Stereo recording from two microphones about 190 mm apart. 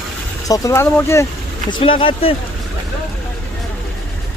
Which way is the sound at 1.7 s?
30° left (ahead or behind).